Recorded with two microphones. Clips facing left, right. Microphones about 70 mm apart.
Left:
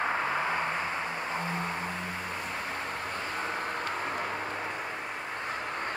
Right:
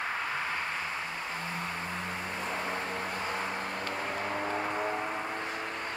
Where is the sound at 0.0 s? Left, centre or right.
Left.